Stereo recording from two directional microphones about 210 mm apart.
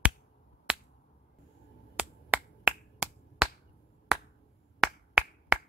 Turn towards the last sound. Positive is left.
turn(degrees=-5)  # may be behind; listen again after turning